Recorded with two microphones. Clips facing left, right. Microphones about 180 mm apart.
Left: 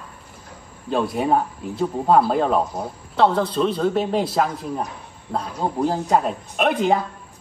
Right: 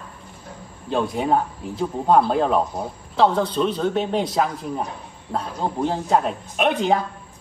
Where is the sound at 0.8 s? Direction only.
5° left (ahead or behind).